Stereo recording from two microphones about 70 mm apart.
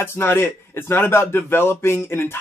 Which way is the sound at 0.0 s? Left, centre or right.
Left.